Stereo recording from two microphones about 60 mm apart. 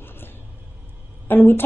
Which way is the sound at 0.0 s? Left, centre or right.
Left.